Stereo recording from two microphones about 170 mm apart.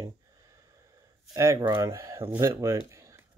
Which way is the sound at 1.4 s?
20° right (ahead or behind).